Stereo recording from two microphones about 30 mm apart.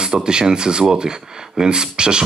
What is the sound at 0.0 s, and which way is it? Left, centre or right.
Speech, right.